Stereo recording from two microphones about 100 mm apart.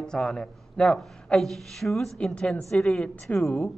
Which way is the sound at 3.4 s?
20° left (ahead or behind).